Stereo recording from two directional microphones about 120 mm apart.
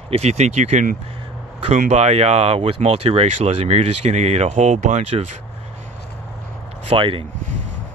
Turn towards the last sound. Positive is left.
turn(degrees=-50)  # may be behind; listen again after turning